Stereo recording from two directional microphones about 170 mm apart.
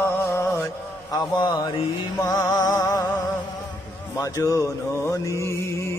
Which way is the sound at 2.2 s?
20° left (ahead or behind).